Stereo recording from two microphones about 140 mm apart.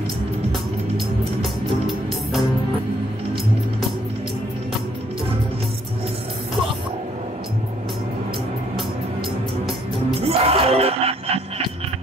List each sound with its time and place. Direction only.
0.5 s music: centre (ahead or behind)
10.2 s music: 45° right (ahead or behind)